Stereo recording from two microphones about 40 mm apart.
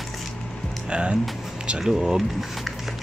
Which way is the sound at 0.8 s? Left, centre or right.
Right.